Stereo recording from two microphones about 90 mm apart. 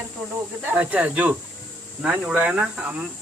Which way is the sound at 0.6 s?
15° right (ahead or behind).